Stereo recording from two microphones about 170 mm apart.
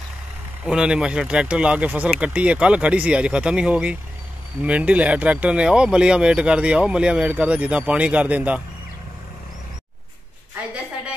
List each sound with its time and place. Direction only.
0.7 s speech: 5° right (ahead or behind)